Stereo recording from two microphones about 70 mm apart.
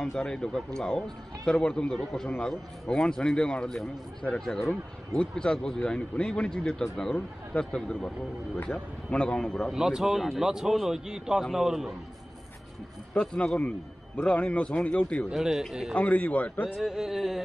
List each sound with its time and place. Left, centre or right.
0.2 s a man's voice: centre
9.1 s a man's voice: centre
9.8 s speech: centre
13.1 s a man's voice: centre
15.3 s speech: centre
15.9 s speech: left
16.8 s speech: centre